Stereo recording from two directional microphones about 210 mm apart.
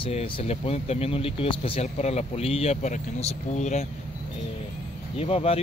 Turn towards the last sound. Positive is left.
turn(degrees=30)  # may be behind; listen again after turning